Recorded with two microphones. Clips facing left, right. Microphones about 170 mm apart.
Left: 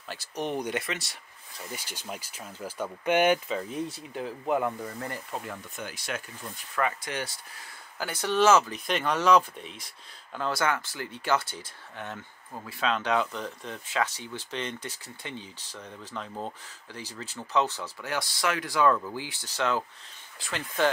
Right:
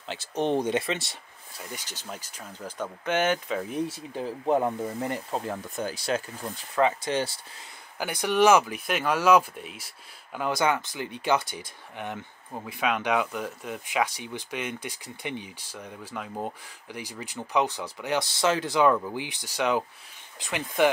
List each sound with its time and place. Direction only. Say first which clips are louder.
0.1 s speech: right 6 dB; 25° right (ahead or behind)
1.8 s speech: left 1 dB; 10° left (ahead or behind)
4.1 s speech: right 3 dB; 30° right (ahead or behind)
8.0 s speech: right 2 dB; 15° right (ahead or behind)